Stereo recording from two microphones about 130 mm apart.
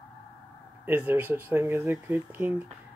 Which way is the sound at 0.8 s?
15° right (ahead or behind).